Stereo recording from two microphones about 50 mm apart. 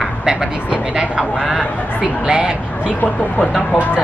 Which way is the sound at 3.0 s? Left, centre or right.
Left.